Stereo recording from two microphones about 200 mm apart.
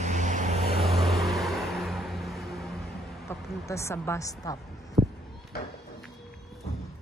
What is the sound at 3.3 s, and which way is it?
A woman's voice, 15° left (ahead or behind).